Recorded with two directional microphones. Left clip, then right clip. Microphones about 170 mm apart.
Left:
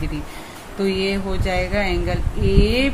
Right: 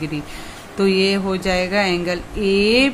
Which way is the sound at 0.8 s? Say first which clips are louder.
Right 4 dB; 35° right (ahead or behind).